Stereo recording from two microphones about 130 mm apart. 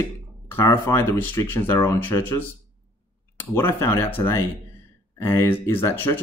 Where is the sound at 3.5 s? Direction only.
20° left (ahead or behind).